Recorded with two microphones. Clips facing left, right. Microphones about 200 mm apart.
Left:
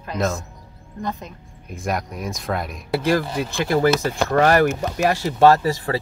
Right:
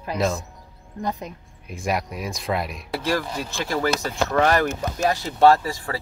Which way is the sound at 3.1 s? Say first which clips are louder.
Left 4 dB; 50° left (ahead or behind).